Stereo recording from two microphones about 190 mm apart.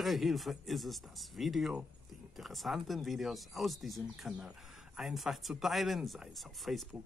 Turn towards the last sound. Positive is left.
turn(degrees=0)  # may be behind; listen again after turning